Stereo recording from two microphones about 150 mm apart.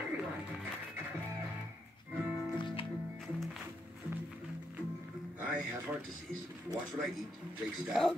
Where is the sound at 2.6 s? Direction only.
35° left (ahead or behind).